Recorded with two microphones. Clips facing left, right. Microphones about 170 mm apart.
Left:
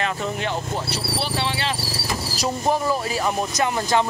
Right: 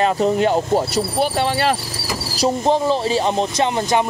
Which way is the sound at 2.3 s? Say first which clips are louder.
Right 6 dB; 25° right (ahead or behind).